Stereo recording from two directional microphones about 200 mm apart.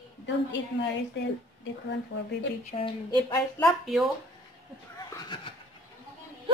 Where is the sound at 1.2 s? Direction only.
60° left (ahead or behind).